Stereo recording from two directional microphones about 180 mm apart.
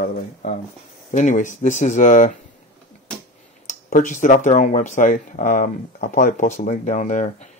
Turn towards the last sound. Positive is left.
turn(degrees=45)  # may be behind; listen again after turning